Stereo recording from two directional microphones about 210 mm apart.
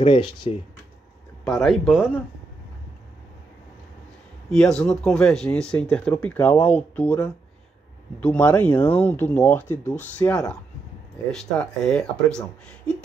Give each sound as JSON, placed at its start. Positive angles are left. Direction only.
{"t": 0.0, "sound": "speech", "side_deg": 25}
{"t": 1.4, "sound": "speech", "side_deg": 0}
{"t": 4.5, "sound": "speech", "side_deg": 5}